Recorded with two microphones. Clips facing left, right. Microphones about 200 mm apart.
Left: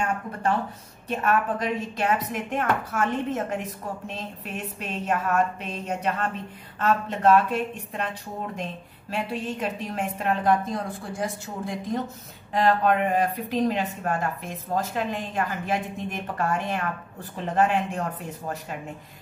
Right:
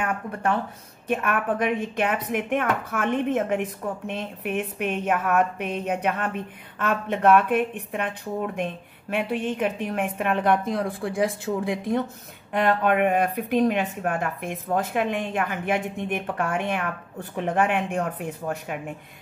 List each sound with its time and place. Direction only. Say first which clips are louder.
0.0 s speech: even; 60° right (ahead or behind)
9.1 s speech: right 4 dB; 60° right (ahead or behind)